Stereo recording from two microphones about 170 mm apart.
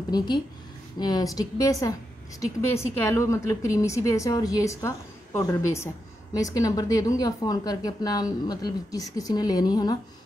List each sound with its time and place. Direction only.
0.1 s a woman's voice: 25° left (ahead or behind)